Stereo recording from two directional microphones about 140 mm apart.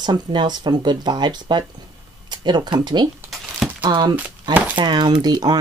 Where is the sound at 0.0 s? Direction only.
30° right (ahead or behind).